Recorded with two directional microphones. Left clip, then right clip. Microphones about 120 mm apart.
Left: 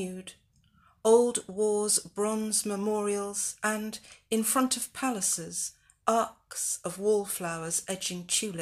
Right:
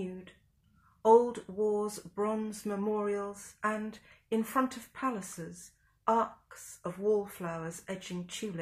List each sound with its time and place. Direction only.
1.2 s speech: 20° left (ahead or behind)